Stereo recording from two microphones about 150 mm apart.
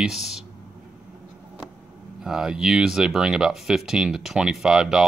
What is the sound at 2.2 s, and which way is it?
Speech, 5° right (ahead or behind).